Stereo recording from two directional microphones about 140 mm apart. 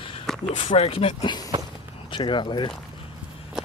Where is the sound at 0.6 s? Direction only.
45° left (ahead or behind).